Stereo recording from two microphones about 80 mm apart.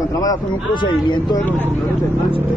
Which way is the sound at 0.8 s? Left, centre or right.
Left.